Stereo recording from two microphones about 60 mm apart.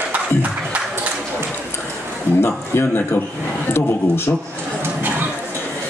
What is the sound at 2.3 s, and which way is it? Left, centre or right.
A man's voice, left.